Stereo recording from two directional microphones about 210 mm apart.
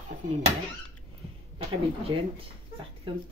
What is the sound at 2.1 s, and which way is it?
Speech, 20° right (ahead or behind).